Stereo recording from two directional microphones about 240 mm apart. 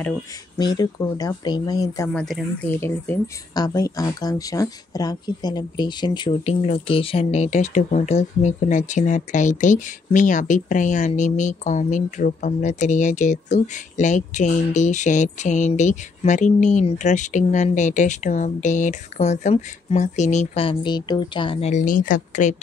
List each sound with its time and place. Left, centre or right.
0.6 s speech: centre
2.1 s speech: centre; by 22.6 s left